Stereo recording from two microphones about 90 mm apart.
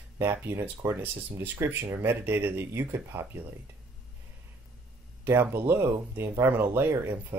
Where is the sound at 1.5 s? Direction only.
25° right (ahead or behind).